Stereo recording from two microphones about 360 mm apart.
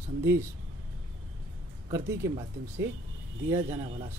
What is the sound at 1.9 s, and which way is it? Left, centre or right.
Speech, centre.